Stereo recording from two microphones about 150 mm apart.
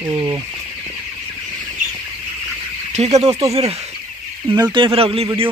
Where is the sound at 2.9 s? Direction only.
45° right (ahead or behind).